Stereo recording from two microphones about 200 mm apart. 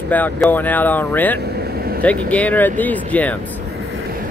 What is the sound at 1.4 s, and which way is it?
Vehicle, 50° right (ahead or behind).